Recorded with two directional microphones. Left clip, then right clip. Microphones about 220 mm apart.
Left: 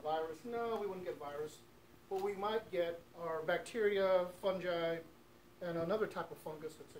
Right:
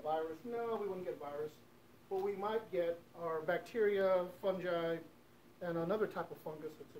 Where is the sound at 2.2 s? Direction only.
5° left (ahead or behind); by 6.3 s 15° right (ahead or behind).